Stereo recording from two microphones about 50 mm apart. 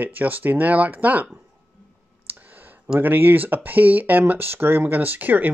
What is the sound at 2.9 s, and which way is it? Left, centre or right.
Speech, right.